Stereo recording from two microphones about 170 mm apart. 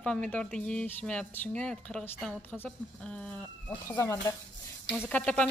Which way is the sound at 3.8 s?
15° left (ahead or behind).